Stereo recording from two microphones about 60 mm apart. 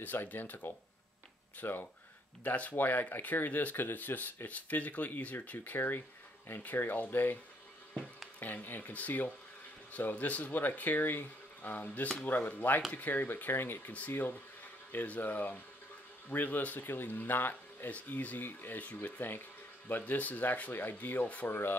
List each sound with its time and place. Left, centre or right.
0.0 s speech: left
8.4 s speech: left